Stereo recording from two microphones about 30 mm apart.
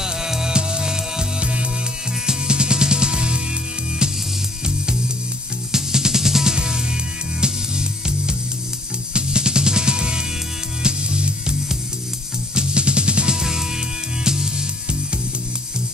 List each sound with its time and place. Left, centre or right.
0.0 s music: centre
0.5 s music: right
1.4 s music: right
2.2 s music: right
4.6 s music: right
9.1 s music: right
12.5 s music: right
13.3 s music: centre